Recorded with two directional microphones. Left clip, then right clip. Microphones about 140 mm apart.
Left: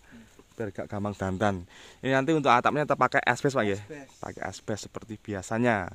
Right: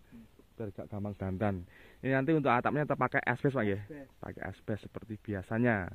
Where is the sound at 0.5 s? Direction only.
85° left.